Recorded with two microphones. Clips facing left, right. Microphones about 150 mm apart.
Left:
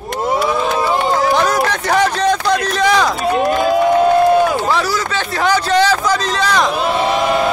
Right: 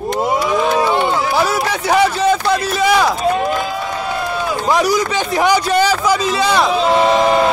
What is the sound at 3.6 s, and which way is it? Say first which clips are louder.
Crowd: left 10 dB; 55° left (ahead or behind).